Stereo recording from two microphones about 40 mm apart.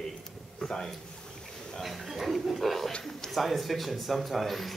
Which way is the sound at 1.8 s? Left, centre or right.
Centre.